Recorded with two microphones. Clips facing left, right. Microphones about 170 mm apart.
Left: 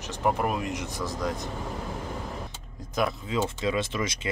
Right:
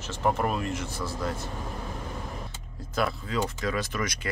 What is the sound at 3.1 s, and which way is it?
Speech, 20° left (ahead or behind).